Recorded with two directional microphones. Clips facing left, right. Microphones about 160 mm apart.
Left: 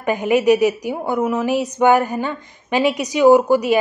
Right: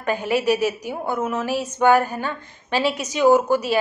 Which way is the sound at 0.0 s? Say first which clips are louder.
Left 5 dB; 15° left (ahead or behind).